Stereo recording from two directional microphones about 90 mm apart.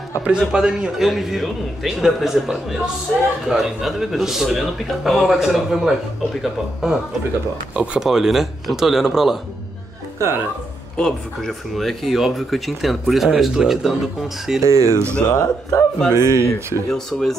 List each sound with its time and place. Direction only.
0.2 s speech: 10° right (ahead or behind)
11.0 s speech: 5° left (ahead or behind)
14.7 s speech: 35° right (ahead or behind)
15.2 s speech: 40° left (ahead or behind)
16.1 s speech: 30° right (ahead or behind)
16.9 s speech: 5° left (ahead or behind)